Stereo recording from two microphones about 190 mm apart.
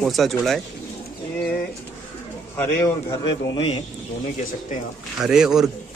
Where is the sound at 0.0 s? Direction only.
Centre (ahead or behind).